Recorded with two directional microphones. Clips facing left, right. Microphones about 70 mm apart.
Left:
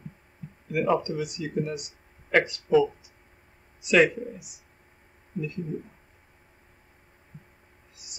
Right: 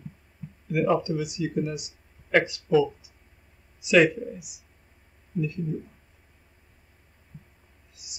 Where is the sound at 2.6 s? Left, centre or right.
Centre.